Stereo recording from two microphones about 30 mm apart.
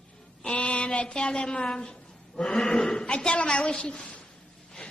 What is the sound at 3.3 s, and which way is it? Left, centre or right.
Speech, left.